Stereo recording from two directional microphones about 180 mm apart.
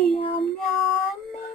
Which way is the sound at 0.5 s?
Centre (ahead or behind).